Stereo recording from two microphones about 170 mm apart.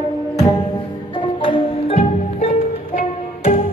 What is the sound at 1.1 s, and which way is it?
Music, 30° left (ahead or behind).